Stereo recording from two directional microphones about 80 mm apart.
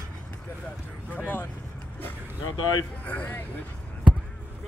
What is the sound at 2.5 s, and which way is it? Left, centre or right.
Speech, left.